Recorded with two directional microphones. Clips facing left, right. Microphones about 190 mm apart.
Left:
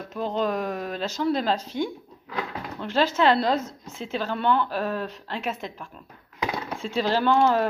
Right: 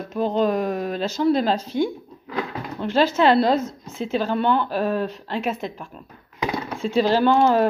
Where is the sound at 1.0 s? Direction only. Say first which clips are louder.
Right 5 dB; 30° right (ahead or behind).